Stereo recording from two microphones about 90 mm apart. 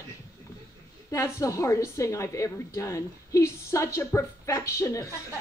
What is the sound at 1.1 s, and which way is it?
A woman's voice, 35° left (ahead or behind).